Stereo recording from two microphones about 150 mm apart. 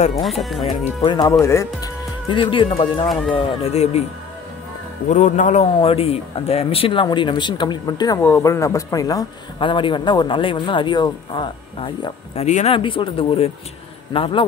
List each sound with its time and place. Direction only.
0.1 s speech: centre (ahead or behind)
1.0 s speech: 30° left (ahead or behind)
2.2 s a man's voice: 35° left (ahead or behind)
5.1 s speech: 55° left (ahead or behind)
5.8 s a man's voice: 40° left (ahead or behind)
12.4 s speech: 45° left (ahead or behind)
12.7 s a man's voice: 35° left (ahead or behind)